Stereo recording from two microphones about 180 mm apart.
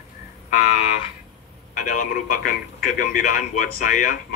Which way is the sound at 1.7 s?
50° left (ahead or behind).